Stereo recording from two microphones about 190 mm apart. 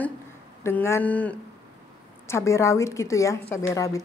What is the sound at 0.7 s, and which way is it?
A woman's voice, 15° left (ahead or behind).